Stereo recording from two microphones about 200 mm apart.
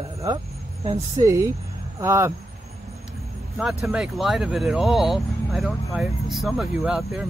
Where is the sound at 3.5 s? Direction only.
Centre (ahead or behind).